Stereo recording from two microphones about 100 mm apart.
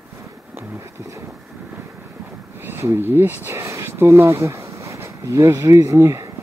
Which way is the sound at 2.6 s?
25° right (ahead or behind).